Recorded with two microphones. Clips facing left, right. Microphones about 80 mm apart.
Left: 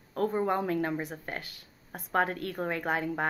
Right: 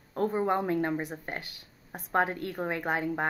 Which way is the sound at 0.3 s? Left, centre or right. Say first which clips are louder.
Right 2 dB; centre.